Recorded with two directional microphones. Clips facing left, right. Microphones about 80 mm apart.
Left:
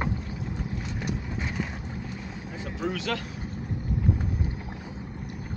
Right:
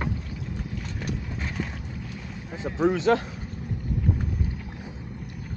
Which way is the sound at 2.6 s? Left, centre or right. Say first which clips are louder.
Right 8 dB; right.